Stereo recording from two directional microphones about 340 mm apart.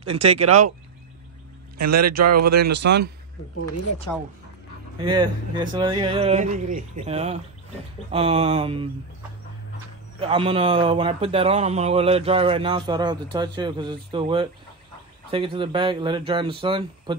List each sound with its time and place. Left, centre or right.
0.0 s speech: centre
1.8 s speech: right
2.5 s speech: right
5.0 s speech: centre
10.2 s speech: centre